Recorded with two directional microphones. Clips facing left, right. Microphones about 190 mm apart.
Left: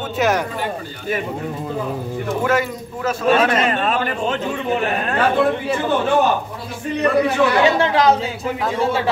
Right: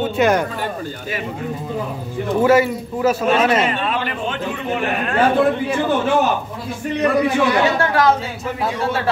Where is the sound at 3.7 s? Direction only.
45° left (ahead or behind).